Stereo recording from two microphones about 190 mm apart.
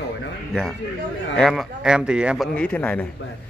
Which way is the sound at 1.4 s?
Centre (ahead or behind).